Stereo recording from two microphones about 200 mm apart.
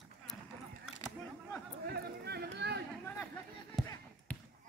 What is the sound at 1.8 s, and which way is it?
Run, 55° right (ahead or behind).